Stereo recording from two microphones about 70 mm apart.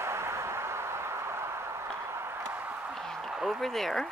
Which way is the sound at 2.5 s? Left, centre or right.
Right.